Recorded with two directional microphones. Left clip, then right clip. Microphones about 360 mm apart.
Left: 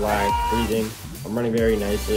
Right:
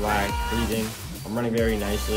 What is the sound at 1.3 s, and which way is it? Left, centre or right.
Speech, centre.